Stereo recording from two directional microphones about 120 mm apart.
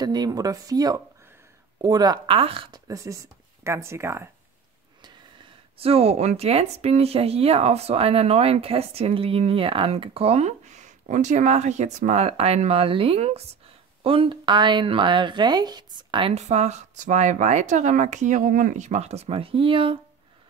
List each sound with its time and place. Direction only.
0.0 s speech: 35° right (ahead or behind)
2.2 s speech: 50° right (ahead or behind)
2.7 s speech: 30° right (ahead or behind)
5.8 s speech: 55° right (ahead or behind)
16.3 s speech: 70° right (ahead or behind); by 20.0 s 45° right (ahead or behind)